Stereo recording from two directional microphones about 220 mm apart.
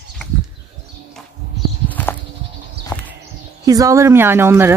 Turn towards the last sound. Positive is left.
turn(degrees=-10)  # may be behind; listen again after turning